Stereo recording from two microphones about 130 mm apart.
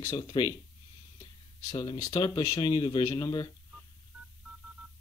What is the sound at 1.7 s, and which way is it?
Speech, 30° left (ahead or behind).